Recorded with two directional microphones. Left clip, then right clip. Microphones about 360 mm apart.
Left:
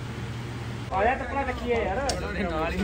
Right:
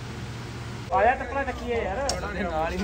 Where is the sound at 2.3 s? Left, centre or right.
Right.